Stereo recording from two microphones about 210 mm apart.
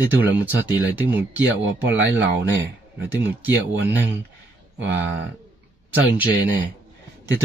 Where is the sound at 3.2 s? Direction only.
10° right (ahead or behind).